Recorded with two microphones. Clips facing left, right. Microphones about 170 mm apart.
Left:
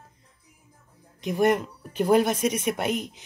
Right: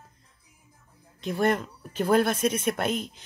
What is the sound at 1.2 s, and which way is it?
Speech, 15° left (ahead or behind).